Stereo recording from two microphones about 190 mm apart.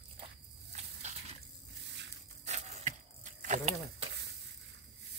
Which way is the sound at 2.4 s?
35° right (ahead or behind).